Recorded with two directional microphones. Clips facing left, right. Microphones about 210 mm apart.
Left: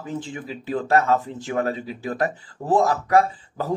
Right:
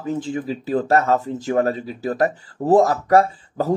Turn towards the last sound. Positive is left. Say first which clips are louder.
# right 5 dB
turn(degrees=-40)  # may be behind; listen again after turning